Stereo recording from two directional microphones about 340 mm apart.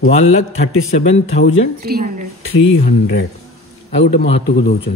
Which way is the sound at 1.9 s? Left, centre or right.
Right.